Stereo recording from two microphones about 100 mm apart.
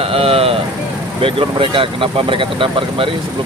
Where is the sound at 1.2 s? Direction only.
60° right (ahead or behind).